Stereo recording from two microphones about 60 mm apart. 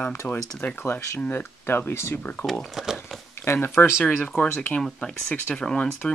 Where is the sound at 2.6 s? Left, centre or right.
Centre.